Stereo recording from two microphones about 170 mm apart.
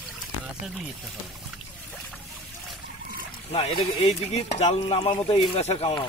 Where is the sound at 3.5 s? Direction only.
35° left (ahead or behind).